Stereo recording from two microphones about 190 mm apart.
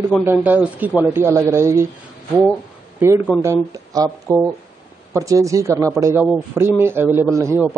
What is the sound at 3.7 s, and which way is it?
A man's voice, 20° right (ahead or behind).